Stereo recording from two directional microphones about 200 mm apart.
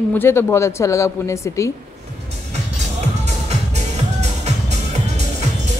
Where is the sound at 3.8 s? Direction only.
35° right (ahead or behind).